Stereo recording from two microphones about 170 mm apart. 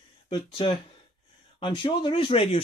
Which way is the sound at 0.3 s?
30° left (ahead or behind).